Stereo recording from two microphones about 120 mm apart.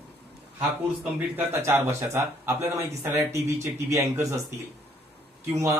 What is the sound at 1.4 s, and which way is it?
A man's voice, 20° right (ahead or behind).